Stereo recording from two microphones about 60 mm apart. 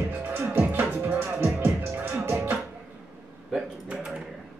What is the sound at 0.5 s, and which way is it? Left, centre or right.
Music, right.